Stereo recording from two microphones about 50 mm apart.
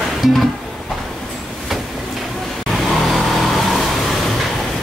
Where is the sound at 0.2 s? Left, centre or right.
Centre.